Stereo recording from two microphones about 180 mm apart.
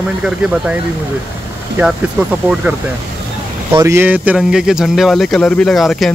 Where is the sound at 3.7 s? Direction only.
15° right (ahead or behind).